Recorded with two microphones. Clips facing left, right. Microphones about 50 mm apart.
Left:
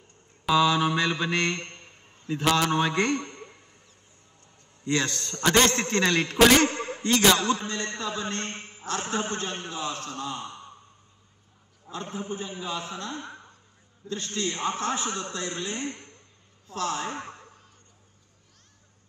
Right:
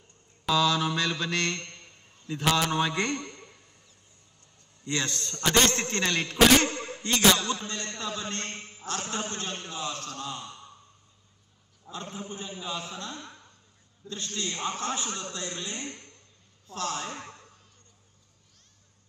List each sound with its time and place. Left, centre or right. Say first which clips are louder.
0.5 s a man's voice: left 3 dB; centre
4.8 s a man's voice: left 4 dB; left
11.9 s a man's voice: left 4 dB; left